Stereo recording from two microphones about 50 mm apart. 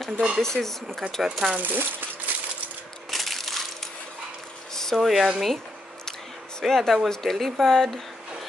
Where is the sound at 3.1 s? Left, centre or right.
Centre.